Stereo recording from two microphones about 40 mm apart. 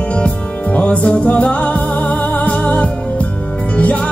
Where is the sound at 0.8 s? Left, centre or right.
Left.